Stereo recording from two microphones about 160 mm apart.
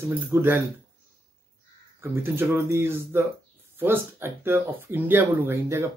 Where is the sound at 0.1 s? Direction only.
15° right (ahead or behind).